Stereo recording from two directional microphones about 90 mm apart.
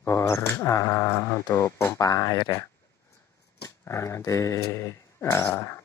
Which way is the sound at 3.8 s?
30° left (ahead or behind).